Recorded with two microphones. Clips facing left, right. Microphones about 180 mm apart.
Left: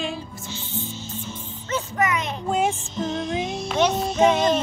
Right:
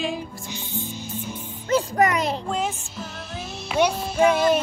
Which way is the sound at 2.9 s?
5° right (ahead or behind).